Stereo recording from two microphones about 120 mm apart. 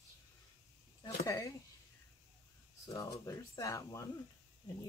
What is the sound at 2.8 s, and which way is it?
Speech, 25° left (ahead or behind).